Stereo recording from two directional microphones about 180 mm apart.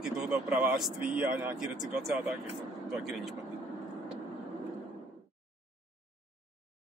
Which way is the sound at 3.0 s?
Centre (ahead or behind).